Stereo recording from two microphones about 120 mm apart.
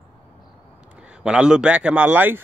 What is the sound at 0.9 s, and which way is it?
A man's voice, 10° right (ahead or behind).